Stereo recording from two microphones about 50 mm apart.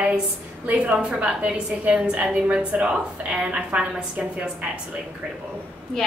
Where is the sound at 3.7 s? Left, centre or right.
Right.